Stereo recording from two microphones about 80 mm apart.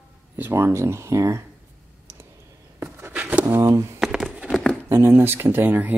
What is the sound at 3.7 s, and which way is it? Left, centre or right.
Speech, right.